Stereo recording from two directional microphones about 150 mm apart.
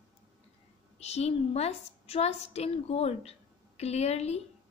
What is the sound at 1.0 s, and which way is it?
A woman's voice, 45° left (ahead or behind).